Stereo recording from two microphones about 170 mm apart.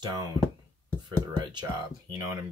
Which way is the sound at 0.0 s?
25° right (ahead or behind).